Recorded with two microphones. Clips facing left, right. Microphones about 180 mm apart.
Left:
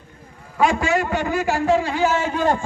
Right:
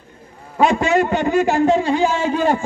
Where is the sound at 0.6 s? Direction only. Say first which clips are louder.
Right 4 dB; 25° right (ahead or behind).